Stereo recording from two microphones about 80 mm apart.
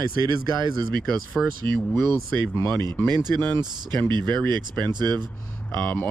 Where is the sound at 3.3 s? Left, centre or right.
Left.